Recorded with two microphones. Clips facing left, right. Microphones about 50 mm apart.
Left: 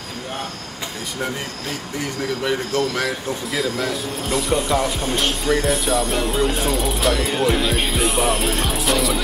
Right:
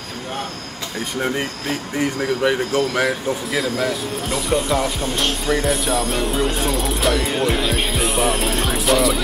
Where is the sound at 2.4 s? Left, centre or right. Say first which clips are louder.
Right 2 dB; centre.